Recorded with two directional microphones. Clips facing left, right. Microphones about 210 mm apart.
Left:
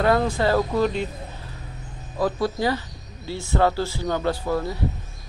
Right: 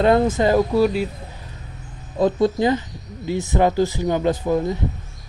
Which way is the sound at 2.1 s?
20° right (ahead or behind).